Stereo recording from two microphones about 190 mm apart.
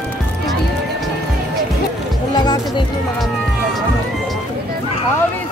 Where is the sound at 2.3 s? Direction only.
20° left (ahead or behind).